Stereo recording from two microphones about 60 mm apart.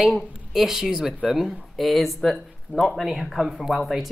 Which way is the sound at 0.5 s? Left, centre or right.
Centre.